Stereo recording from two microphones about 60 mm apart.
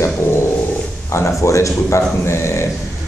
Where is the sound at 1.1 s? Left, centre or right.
Left.